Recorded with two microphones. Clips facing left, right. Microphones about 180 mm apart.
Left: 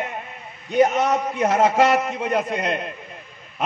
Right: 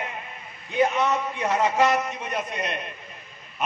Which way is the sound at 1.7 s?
75° left (ahead or behind).